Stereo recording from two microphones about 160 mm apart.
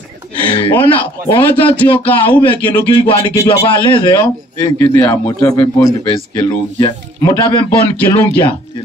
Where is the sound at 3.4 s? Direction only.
30° left (ahead or behind).